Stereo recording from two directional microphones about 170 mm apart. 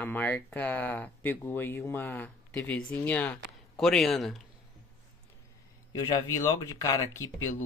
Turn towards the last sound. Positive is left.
turn(degrees=15)  # may be behind; listen again after turning